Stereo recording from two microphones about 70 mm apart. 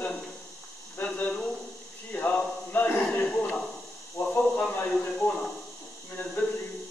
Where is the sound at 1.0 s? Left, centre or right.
Centre.